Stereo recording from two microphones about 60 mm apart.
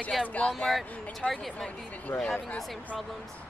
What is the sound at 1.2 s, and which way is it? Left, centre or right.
Speech, centre.